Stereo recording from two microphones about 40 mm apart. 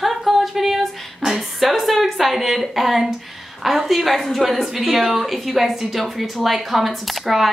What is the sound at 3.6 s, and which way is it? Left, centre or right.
A woman's voice, centre.